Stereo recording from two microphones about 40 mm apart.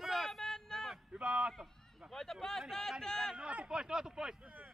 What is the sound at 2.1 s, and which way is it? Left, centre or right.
Speech, centre.